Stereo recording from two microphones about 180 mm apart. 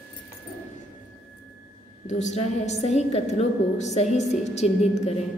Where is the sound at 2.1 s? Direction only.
40° left (ahead or behind).